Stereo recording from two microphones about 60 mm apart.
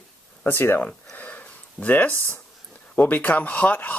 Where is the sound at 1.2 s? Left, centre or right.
Left.